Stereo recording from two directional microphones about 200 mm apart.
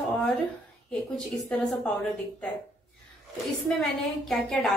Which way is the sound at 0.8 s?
5° left (ahead or behind).